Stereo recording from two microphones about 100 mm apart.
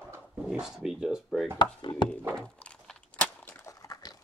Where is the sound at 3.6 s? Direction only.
35° left (ahead or behind).